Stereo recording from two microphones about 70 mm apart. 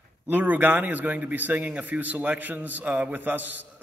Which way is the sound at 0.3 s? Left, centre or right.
Right.